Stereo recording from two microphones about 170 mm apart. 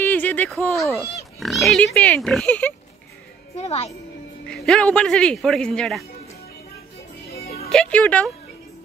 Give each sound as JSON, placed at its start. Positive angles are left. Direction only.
{"t": 0.0, "sound": "a sound", "side_deg": 10}
{"t": 1.4, "sound": "speech", "side_deg": 0}
{"t": 3.5, "sound": "a child's voice", "side_deg": 40}
{"t": 4.5, "sound": "speech", "side_deg": 5}
{"t": 7.3, "sound": "music", "side_deg": 65}
{"t": 7.7, "sound": "speech", "side_deg": 5}